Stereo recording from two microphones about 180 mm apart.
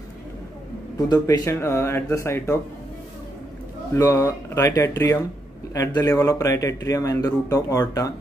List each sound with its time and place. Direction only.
1.0 s speech: 20° left (ahead or behind)
3.9 s speech: 15° left (ahead or behind)